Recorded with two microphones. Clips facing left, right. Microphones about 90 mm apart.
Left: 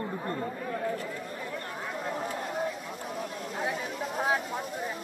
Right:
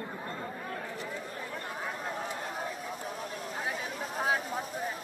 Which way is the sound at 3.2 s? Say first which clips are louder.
Left 3 dB; centre (ahead or behind).